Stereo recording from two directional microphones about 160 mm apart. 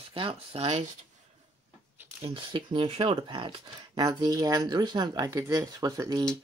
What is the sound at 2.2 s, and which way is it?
Speech, 30° right (ahead or behind).